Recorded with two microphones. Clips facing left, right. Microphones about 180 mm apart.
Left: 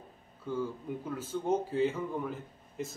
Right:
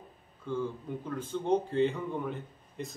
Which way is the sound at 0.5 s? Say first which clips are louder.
Right 1 dB; 5° left (ahead or behind).